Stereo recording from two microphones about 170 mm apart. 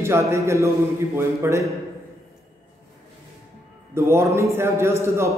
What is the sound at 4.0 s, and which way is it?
A man's voice, 15° right (ahead or behind).